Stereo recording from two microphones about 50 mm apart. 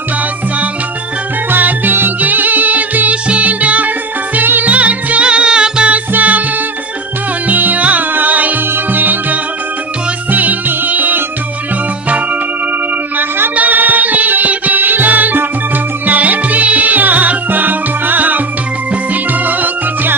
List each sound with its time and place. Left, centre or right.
1.5 s music: right; by 5.9 s centre
6.1 s music: right
7.4 s music: right
13.6 s music: right